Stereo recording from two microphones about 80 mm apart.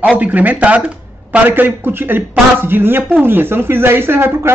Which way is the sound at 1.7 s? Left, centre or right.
Right.